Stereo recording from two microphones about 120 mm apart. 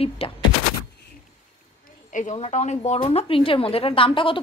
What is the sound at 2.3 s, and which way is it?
Speech, 60° left (ahead or behind).